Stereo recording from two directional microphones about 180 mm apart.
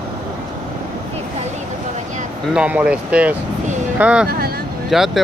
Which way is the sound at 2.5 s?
5° right (ahead or behind).